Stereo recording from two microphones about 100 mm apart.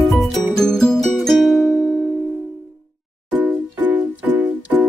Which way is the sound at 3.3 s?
15° right (ahead or behind).